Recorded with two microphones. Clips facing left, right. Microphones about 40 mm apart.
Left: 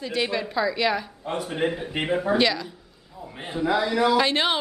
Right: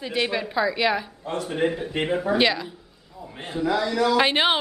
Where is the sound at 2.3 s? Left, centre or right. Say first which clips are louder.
Right 3 dB; centre.